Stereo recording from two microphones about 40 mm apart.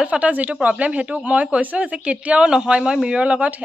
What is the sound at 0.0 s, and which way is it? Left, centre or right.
Speech, right.